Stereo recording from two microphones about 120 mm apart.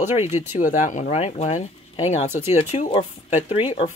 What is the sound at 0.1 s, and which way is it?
Speech, 80° left.